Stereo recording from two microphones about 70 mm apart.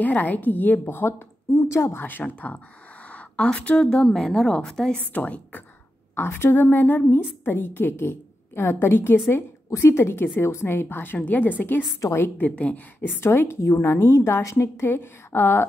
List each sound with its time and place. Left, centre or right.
0.0 s a woman's voice: left
1.6 s a woman's voice: left
2.2 s a woman's voice: centre
5.1 s a woman's voice: left
6.1 s a woman's voice: left
13.2 s a woman's voice: left
14.9 s a woman's voice: left